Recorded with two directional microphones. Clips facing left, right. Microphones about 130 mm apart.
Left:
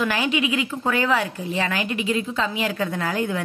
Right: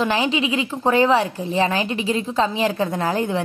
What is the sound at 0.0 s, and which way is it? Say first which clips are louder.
A woman's voice: right 2 dB; 25° right (ahead or behind).